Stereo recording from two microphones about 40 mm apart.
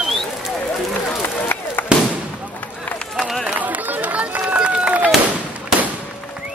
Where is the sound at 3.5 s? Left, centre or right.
Right.